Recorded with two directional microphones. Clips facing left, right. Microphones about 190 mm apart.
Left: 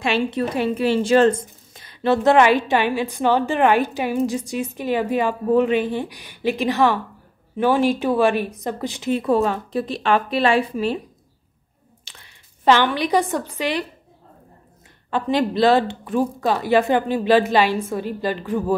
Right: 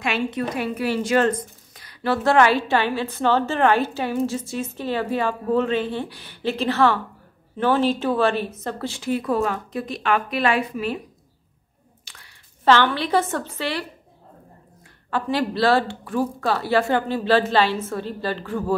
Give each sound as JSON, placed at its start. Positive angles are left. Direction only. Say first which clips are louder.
{"t": 0.0, "sound": "a woman's voice", "louder": "left 3 dB", "side_deg": 30}
{"t": 12.0, "sound": "a sound", "louder": "left 2 dB", "side_deg": 25}
{"t": 13.6, "sound": "a woman's voice", "louder": "left 5 dB", "side_deg": 15}
{"t": 15.0, "sound": "a woman's voice", "louder": "left 3 dB", "side_deg": 20}